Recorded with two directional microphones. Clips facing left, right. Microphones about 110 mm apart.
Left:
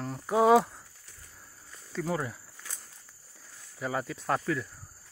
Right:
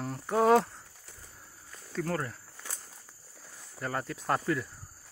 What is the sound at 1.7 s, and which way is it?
Cricket, 5° left (ahead or behind).